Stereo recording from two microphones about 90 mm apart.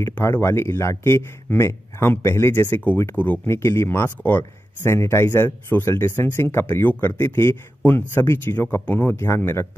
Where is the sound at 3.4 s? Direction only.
30° left (ahead or behind).